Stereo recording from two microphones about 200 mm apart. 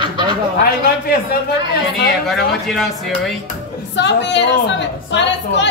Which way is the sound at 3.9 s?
65° left (ahead or behind).